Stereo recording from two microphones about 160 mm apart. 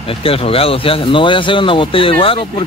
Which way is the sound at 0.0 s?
35° left (ahead or behind).